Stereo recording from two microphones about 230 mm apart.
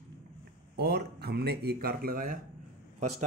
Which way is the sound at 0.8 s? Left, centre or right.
Right.